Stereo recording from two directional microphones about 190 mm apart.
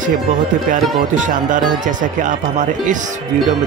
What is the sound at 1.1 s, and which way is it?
Speech, 40° right (ahead or behind).